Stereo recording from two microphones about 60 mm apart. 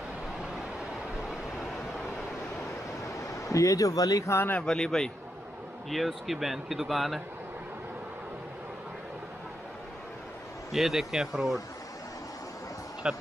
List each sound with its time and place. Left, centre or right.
1.6 s vehicle: centre
3.0 s waves: left
4.6 s speech: centre
5.9 s speech: centre
10.7 s speech: centre
13.0 s speech: centre